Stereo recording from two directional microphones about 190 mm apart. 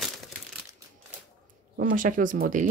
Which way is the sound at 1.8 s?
45° right (ahead or behind).